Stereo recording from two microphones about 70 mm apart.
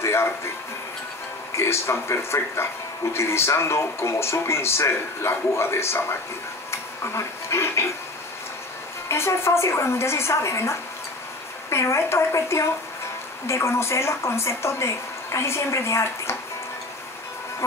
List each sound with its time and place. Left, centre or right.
0.0 s music: left
1.5 s speech: left
6.7 s a sound: left
9.1 s speech: left